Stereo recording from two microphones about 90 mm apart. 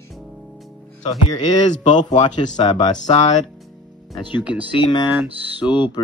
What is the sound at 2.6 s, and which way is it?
Speech, 90° left.